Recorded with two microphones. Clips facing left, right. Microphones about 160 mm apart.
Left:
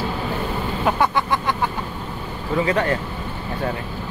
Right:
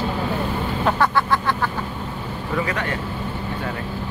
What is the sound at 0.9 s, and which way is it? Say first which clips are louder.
Vehicle: even; 15° left (ahead or behind).